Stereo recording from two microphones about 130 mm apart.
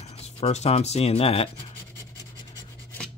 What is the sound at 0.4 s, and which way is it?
Speech, 55° left (ahead or behind).